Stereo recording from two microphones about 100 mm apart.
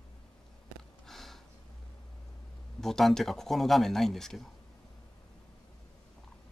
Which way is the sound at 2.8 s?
5° left (ahead or behind).